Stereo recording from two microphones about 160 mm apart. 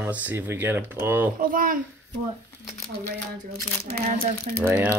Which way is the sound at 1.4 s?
60° right (ahead or behind).